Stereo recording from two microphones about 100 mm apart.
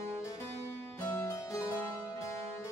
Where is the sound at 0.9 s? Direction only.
25° left (ahead or behind).